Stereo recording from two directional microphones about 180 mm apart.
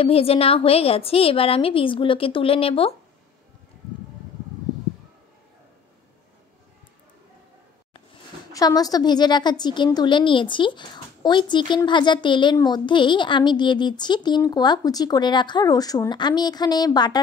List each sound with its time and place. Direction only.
0.0 s a woman's voice: 35° left (ahead or behind)
8.5 s a woman's voice: 20° left (ahead or behind)